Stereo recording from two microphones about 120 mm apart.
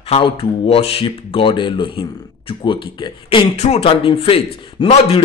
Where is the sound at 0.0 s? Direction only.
50° left (ahead or behind).